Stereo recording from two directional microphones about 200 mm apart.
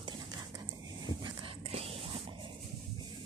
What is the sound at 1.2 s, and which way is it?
Dog, 25° right (ahead or behind).